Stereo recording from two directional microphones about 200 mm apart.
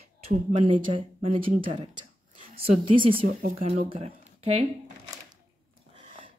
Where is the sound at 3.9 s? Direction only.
30° right (ahead or behind).